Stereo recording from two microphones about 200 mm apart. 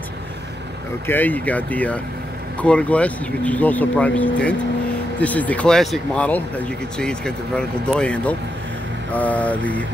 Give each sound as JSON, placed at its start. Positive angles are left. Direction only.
{"t": 1.0, "sound": "speech", "side_deg": 10}